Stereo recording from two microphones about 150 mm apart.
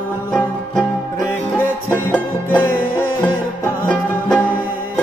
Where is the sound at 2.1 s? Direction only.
15° left (ahead or behind).